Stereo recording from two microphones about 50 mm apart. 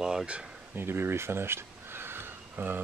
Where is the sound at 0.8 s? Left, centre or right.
Right.